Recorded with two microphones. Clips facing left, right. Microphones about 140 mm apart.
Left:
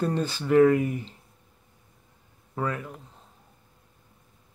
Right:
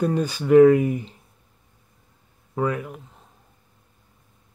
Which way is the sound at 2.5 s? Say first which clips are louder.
Right 5 dB; 15° right (ahead or behind).